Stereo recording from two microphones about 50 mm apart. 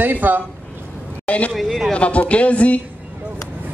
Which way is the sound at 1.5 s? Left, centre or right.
Centre.